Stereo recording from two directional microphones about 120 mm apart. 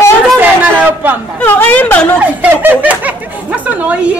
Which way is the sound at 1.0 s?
15° right (ahead or behind).